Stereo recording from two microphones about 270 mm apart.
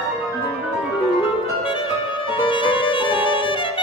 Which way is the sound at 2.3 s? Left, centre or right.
Centre.